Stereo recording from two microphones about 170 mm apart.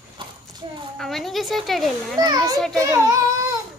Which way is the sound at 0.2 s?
30° right (ahead or behind).